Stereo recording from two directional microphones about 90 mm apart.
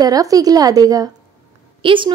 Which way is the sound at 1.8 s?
70° right (ahead or behind).